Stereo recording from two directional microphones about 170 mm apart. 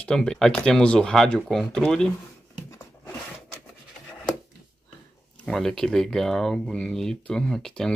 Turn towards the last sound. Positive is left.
turn(degrees=5)  # may be behind; listen again after turning